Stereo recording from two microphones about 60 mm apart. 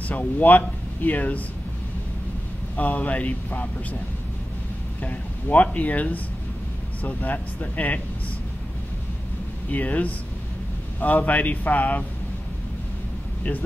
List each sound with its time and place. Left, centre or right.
0.1 s speech: left
2.7 s speech: left
5.0 s speech: left
9.7 s speech: left